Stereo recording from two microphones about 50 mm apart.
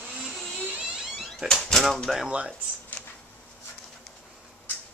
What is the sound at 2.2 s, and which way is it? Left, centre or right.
Speech, right.